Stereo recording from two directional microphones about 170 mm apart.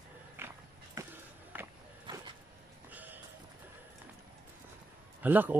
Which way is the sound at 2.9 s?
10° right (ahead or behind).